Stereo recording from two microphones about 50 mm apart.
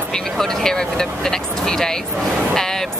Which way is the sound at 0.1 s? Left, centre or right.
Centre.